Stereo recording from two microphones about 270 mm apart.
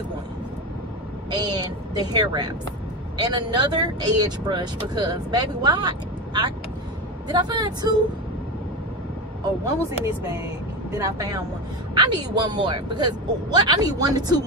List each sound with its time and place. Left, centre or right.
1.3 s speech: centre
9.8 s speech: centre